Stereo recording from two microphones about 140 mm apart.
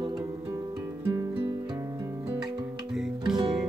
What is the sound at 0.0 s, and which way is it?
Music, 25° right (ahead or behind).